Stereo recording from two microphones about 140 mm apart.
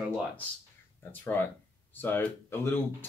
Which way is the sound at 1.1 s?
15° left (ahead or behind).